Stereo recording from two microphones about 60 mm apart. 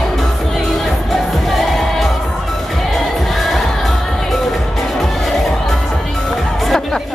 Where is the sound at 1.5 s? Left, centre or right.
Centre.